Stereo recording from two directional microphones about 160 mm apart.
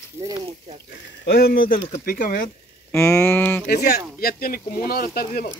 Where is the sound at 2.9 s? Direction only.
15° left (ahead or behind).